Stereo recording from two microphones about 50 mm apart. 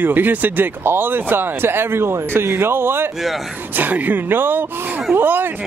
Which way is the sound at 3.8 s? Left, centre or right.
Right.